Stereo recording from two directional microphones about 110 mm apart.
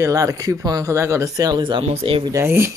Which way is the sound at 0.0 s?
30° right (ahead or behind).